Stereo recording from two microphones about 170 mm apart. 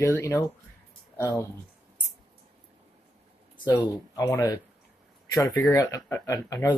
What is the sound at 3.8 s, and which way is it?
Speech, 20° left (ahead or behind).